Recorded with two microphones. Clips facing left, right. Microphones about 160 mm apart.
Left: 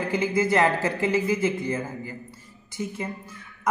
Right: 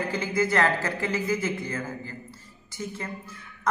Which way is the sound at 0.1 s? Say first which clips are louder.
Left 5 dB; 20° left (ahead or behind).